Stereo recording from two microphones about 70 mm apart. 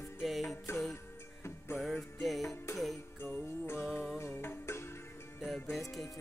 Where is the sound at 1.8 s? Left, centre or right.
Centre.